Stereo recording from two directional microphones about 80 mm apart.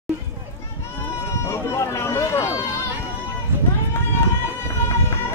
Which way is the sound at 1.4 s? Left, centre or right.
Left.